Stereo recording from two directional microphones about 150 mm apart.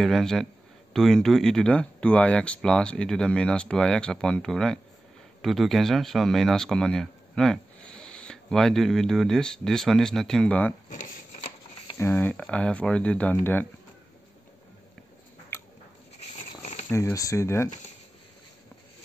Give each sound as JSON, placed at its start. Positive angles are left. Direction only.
{"t": 0.0, "sound": "speech", "side_deg": 5}
{"t": 12.0, "sound": "speech", "side_deg": 15}
{"t": 16.3, "sound": "a sound", "side_deg": 45}
{"t": 16.9, "sound": "speech", "side_deg": 20}